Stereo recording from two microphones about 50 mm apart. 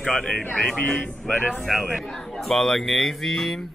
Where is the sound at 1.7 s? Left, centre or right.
Centre.